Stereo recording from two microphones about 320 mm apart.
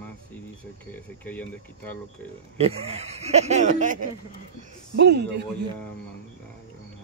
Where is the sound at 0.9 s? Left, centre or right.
Centre.